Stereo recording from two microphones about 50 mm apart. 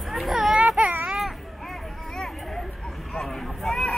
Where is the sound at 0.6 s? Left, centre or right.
Right.